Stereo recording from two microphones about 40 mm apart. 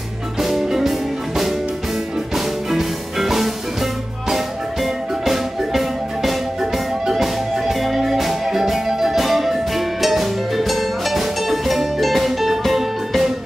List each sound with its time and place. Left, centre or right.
0.4 s music: centre